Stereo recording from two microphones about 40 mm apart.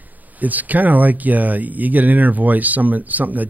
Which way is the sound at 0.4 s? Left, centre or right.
Right.